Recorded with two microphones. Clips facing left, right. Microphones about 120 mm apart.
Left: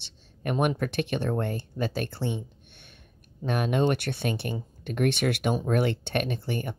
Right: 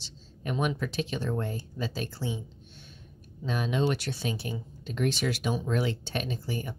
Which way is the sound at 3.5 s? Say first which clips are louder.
Left 3 dB; 60° left (ahead or behind).